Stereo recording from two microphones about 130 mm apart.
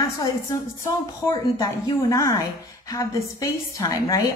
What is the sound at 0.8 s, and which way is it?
A woman's voice, 25° left (ahead or behind).